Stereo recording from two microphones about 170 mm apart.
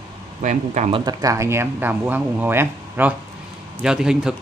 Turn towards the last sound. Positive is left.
turn(degrees=-5)  # may be behind; listen again after turning